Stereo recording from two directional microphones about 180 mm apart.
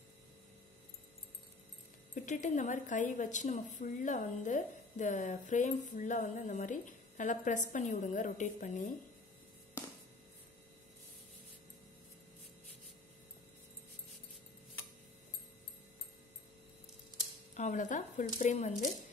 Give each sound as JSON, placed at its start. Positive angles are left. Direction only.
{"t": 2.1, "sound": "a woman's voice", "side_deg": 45}
{"t": 17.6, "sound": "a woman's voice", "side_deg": 45}